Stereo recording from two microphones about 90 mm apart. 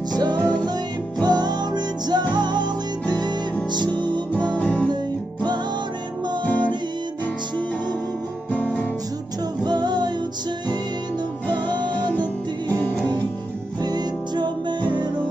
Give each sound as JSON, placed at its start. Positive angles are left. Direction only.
{"t": 0.1, "sound": "music", "side_deg": -50}
{"t": 0.4, "sound": "music", "side_deg": 15}
{"t": 1.2, "sound": "music", "side_deg": -50}
{"t": 4.6, "sound": "music", "side_deg": 15}
{"t": 6.4, "sound": "music", "side_deg": 15}
{"t": 8.5, "sound": "music", "side_deg": 15}
{"t": 9.6, "sound": "music", "side_deg": -55}
{"t": 12.6, "sound": "music", "side_deg": 20}
{"t": 13.7, "sound": "music", "side_deg": -50}